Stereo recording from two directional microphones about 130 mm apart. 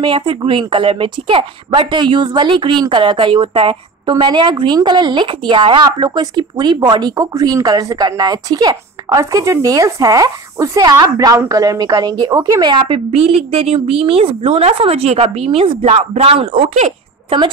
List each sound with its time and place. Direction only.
0.0 s a woman's voice: 40° right (ahead or behind)